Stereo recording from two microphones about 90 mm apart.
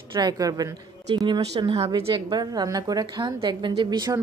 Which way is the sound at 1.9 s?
90° right.